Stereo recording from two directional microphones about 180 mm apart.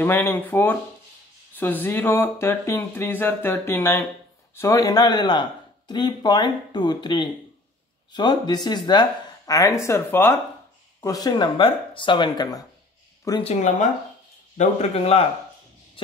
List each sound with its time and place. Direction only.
0.0 s speech: 10° left (ahead or behind)
13.4 s a man's voice: 40° left (ahead or behind)